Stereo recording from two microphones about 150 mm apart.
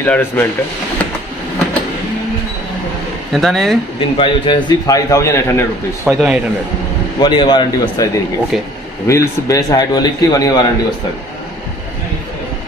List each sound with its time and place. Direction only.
0.0 s speech: 15° left (ahead or behind)
3.3 s speech: centre (ahead or behind)
4.0 s a man's voice: 35° left (ahead or behind)
6.0 s speech: 5° right (ahead or behind)
7.2 s a man's voice: 30° left (ahead or behind)